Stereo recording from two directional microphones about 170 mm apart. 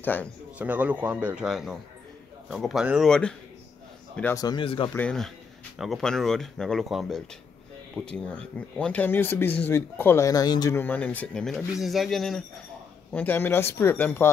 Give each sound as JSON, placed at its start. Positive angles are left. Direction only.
{"t": 0.0, "sound": "speech", "side_deg": 10}
{"t": 0.6, "sound": "speech", "side_deg": -10}
{"t": 4.2, "sound": "a man's voice", "side_deg": 15}
{"t": 4.9, "sound": "speech", "side_deg": 5}